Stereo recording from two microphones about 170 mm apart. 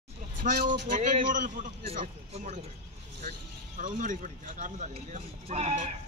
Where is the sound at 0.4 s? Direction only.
55° right (ahead or behind).